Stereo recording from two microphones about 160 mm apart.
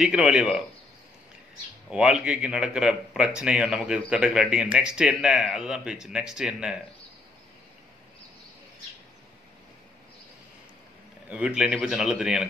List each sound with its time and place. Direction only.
0.0 s speech: 5° right (ahead or behind)
1.9 s speech: 5° right (ahead or behind)
11.2 s speech: 5° right (ahead or behind)